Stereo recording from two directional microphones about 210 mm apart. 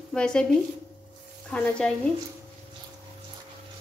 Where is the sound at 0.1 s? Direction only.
5° left (ahead or behind).